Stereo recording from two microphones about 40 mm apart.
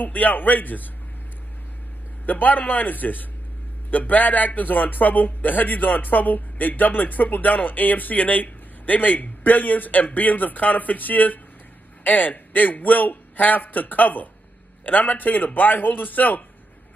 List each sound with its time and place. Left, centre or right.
0.0 s speech: left
2.2 s speech: left